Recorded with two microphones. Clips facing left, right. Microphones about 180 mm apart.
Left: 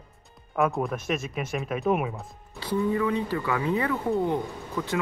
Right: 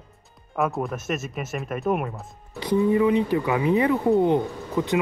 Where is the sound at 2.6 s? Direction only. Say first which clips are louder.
Right 6 dB; 15° right (ahead or behind).